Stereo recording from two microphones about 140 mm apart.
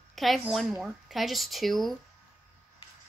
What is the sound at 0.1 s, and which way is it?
Speech, centre (ahead or behind).